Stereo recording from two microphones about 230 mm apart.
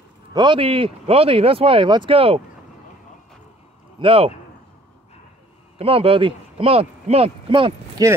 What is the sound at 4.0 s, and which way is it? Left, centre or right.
Speech, right.